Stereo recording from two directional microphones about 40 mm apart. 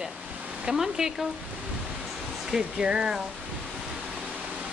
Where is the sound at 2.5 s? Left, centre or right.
Centre.